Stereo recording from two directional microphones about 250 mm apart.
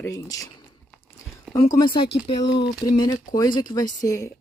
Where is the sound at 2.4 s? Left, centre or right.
Left.